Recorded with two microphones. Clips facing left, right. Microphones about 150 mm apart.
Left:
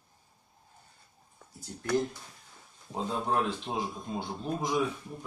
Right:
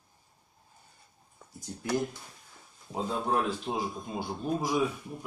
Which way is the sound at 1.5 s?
15° right (ahead or behind).